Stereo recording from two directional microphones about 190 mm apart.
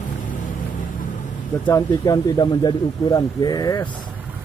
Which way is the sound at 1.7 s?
20° left (ahead or behind).